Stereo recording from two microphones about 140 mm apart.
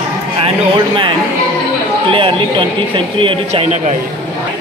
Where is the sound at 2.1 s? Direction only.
40° right (ahead or behind).